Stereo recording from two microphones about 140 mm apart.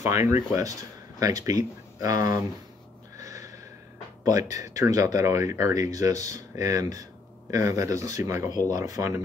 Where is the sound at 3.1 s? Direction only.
25° right (ahead or behind).